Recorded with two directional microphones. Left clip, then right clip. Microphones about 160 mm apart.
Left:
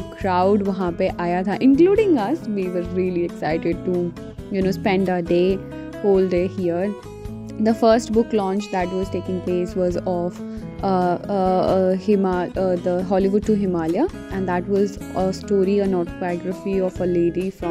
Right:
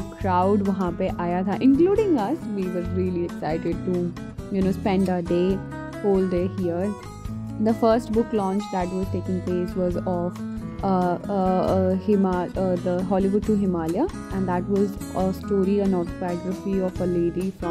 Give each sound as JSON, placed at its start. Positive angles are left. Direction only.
{"t": 0.2, "sound": "speech", "side_deg": 35}